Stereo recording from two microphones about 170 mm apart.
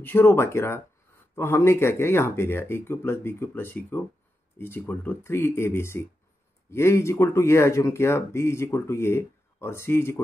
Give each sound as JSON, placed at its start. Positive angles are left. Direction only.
{"t": 0.0, "sound": "speech", "side_deg": 15}